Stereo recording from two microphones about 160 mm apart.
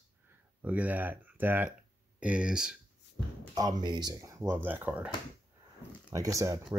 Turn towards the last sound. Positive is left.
turn(degrees=-20)  # may be behind; listen again after turning